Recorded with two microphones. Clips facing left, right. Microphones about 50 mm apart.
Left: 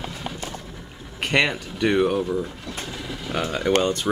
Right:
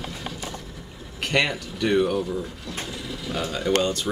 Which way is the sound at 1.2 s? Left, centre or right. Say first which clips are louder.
Left 2 dB; left.